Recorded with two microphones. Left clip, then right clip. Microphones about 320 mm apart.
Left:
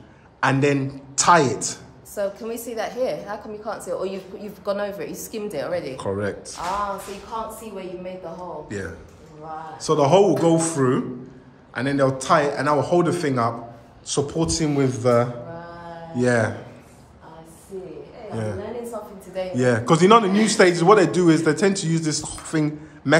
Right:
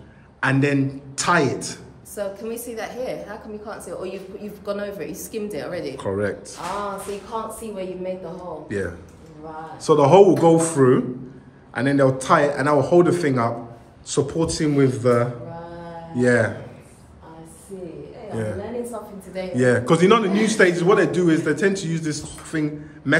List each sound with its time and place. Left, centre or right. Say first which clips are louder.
0.4 s a woman's voice: left 1 dB; centre
8.6 s a man's voice: right 4 dB; centre
18.3 s a woman's voice: right 1 dB; centre